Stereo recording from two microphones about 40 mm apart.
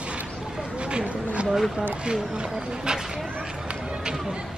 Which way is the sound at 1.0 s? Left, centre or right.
Right.